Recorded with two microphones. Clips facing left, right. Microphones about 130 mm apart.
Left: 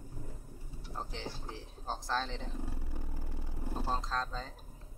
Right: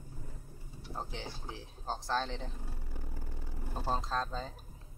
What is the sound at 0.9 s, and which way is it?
Speech, 5° right (ahead or behind).